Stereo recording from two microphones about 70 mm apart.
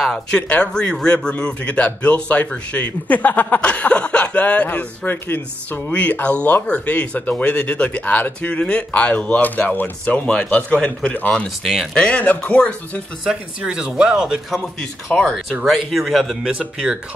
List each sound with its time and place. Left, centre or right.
0.0 s a man's voice: centre
0.4 s a man's voice: centre
11.6 s speech: centre
11.9 s speech: centre
13.3 s speech: centre
14.8 s a man's voice: centre
15.6 s speech: centre
16.4 s speech: centre